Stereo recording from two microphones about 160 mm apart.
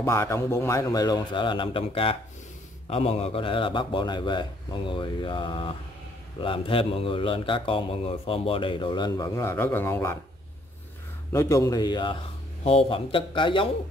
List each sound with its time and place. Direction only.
0.0 s a man's voice: 15° left (ahead or behind)
11.3 s a man's voice: 20° left (ahead or behind)